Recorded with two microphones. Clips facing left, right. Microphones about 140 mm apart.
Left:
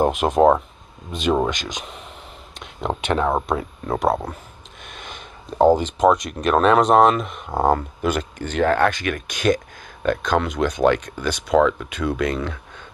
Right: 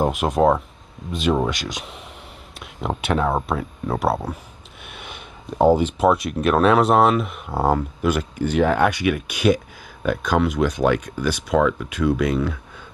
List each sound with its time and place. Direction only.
0.0 s speech: centre (ahead or behind)
1.5 s speech: 5° right (ahead or behind)
4.8 s a sound: 10° right (ahead or behind)
5.8 s speech: 5° right (ahead or behind)